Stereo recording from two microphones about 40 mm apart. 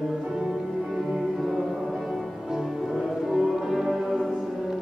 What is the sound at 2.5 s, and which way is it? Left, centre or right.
Music, centre.